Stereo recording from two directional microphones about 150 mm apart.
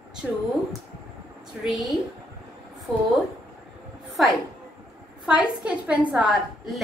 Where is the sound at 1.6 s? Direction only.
Centre (ahead or behind).